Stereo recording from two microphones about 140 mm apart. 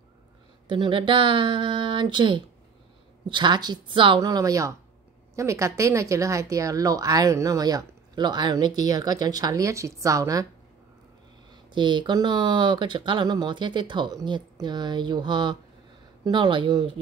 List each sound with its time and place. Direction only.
0.7 s speech: 35° right (ahead or behind)
11.7 s speech: 35° right (ahead or behind)